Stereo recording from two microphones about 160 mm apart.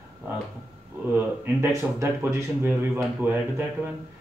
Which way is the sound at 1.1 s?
15° right (ahead or behind).